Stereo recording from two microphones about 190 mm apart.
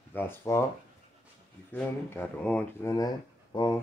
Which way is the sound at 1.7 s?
10° left (ahead or behind).